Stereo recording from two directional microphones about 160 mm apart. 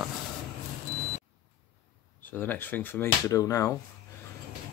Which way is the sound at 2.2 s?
10° left (ahead or behind).